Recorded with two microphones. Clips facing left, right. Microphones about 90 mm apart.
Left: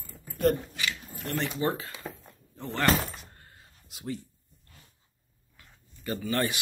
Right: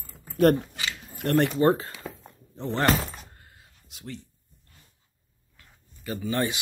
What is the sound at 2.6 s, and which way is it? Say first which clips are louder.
Speech: right 4 dB; 30° right (ahead or behind).